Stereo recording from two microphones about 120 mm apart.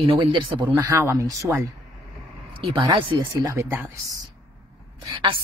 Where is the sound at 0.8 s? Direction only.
25° right (ahead or behind).